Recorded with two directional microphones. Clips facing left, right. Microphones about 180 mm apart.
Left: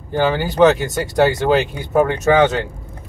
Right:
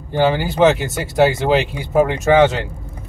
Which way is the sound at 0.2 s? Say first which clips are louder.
Even; 10° right (ahead or behind).